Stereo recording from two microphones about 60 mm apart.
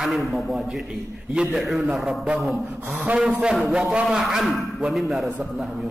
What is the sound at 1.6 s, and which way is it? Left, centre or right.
A man's voice, centre.